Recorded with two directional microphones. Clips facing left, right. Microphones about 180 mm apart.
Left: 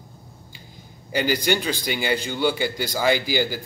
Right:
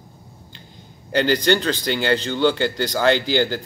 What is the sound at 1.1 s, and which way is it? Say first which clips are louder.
A man's voice: right 4 dB; 10° left (ahead or behind).